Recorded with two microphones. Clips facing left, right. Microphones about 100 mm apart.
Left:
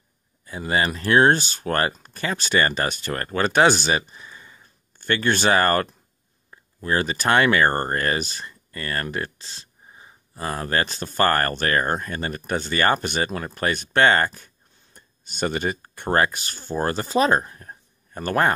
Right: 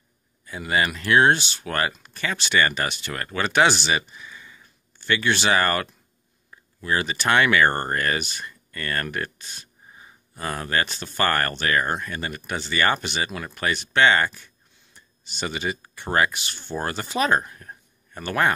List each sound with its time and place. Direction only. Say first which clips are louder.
0.5 s speech: left 1 dB; 30° left (ahead or behind)